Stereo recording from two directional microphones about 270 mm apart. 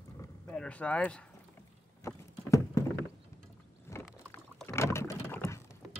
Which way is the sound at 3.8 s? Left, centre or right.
Centre.